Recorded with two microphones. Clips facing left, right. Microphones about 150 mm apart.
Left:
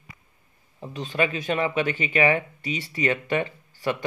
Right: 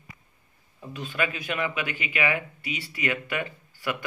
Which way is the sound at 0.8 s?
30° left (ahead or behind).